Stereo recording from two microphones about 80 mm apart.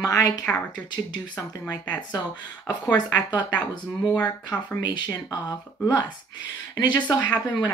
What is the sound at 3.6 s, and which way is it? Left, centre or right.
Speech, left.